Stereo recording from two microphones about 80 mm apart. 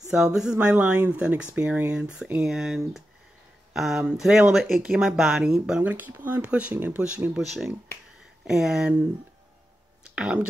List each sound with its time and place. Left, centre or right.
0.1 s speech: centre
7.3 s speech: centre
10.1 s speech: centre